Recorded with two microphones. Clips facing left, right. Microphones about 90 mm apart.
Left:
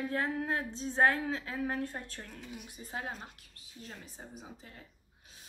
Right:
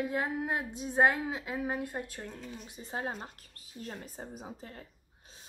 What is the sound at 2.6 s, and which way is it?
Speech, 25° right (ahead or behind).